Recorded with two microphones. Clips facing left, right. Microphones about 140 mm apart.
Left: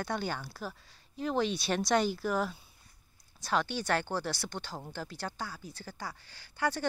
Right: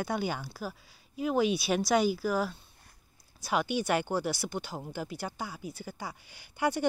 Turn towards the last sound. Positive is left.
turn(degrees=-15)  # may be behind; listen again after turning